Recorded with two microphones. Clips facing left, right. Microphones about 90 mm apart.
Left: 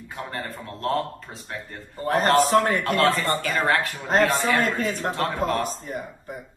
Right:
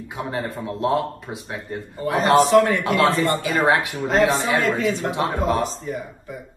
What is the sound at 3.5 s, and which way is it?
Speech, 10° right (ahead or behind).